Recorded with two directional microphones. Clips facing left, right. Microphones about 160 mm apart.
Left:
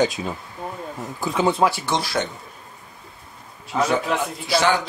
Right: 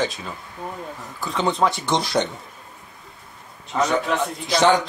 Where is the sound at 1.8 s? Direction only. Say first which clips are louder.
Right 2 dB; 20° right (ahead or behind).